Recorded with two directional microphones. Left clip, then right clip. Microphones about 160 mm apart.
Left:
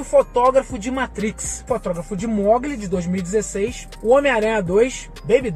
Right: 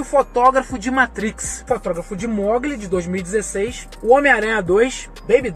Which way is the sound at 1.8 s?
20° left (ahead or behind).